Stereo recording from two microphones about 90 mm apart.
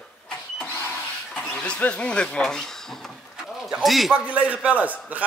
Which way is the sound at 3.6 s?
5° right (ahead or behind).